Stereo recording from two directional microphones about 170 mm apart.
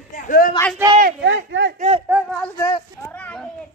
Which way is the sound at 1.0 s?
90° right.